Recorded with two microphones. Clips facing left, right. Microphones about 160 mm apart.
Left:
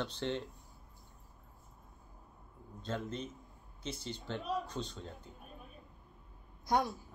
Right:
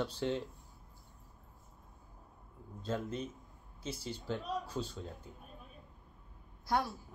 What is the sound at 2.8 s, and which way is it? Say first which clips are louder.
Speech: right 2 dB; 5° right (ahead or behind).